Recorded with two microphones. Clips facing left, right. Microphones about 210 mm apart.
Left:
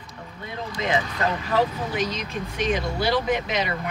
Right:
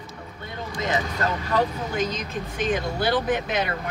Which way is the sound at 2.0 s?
50° right (ahead or behind).